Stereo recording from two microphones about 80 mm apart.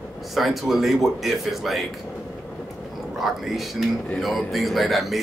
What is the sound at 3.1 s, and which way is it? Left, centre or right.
Speech, centre.